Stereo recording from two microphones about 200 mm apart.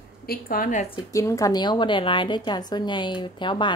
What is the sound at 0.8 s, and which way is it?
A woman's voice, 15° left (ahead or behind).